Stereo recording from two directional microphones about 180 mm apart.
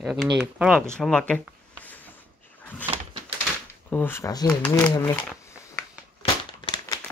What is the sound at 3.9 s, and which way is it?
Speech, 10° left (ahead or behind).